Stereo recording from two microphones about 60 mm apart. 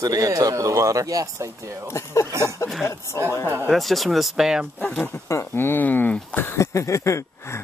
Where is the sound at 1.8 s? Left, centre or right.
Left.